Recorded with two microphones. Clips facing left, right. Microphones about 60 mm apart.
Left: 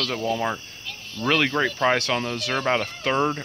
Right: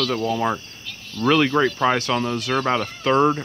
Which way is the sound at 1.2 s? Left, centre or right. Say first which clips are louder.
Right 4 dB; right.